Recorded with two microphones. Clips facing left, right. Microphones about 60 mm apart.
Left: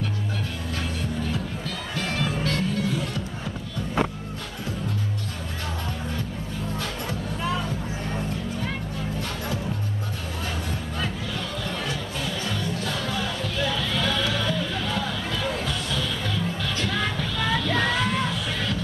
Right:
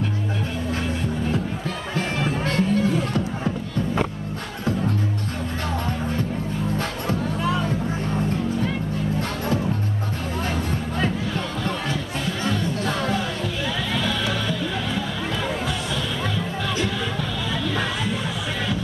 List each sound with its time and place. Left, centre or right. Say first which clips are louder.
2.0 s music: right 2 dB; right
12.4 s music: right 5 dB; right
13.9 s music: right 2 dB; centre